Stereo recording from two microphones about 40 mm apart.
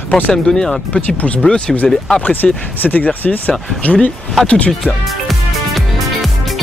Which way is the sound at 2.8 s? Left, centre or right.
Left.